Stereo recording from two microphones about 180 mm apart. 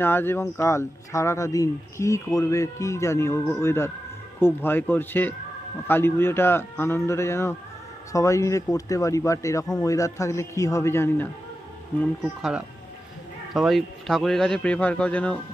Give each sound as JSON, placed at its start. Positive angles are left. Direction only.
{"t": 0.0, "sound": "speech", "side_deg": 10}
{"t": 12.2, "sound": "a man's voice", "side_deg": -5}